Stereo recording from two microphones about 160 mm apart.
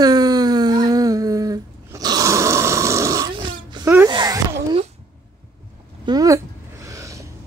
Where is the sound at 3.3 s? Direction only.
30° right (ahead or behind).